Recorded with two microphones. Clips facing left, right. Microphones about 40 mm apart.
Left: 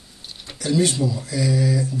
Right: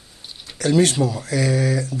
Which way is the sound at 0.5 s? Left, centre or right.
Right.